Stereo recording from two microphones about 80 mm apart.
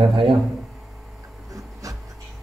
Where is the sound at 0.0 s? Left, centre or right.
Right.